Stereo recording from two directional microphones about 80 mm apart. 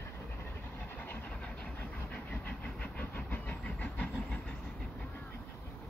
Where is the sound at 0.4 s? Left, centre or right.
Left.